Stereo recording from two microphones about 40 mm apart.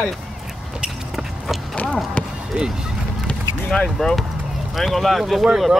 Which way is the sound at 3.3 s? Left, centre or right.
Left.